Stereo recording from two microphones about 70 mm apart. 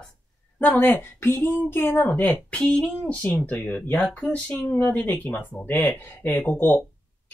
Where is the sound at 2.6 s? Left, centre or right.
Centre.